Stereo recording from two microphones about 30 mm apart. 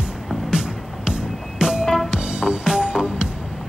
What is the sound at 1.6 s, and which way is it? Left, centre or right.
Music, centre.